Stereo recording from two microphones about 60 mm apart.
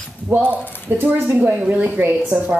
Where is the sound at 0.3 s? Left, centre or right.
Right.